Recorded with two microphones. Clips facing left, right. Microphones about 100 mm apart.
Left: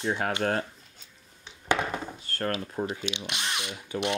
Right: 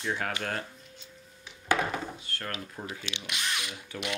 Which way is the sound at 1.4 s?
20° left (ahead or behind).